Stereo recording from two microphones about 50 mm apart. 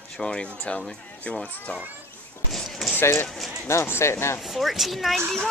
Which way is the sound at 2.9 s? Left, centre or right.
Left.